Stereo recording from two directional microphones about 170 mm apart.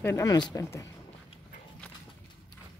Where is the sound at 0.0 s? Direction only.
20° left (ahead or behind).